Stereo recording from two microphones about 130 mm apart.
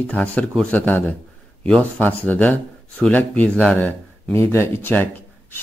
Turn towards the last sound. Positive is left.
turn(degrees=15)  # may be behind; listen again after turning